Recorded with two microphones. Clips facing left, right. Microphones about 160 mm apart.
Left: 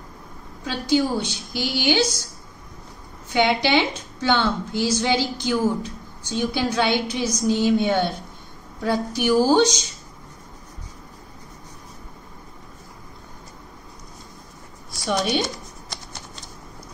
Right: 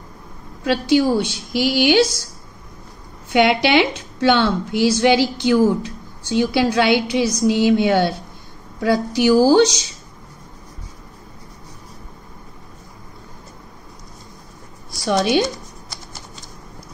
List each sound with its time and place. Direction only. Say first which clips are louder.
0.7 s a woman's voice: right 5 dB; 70° right (ahead or behind)
3.3 s a woman's voice: right 4 dB; 75° right (ahead or behind)
14.9 s a woman's voice: right 5 dB; 90° right